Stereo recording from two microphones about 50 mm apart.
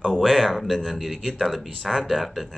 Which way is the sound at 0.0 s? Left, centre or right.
Centre.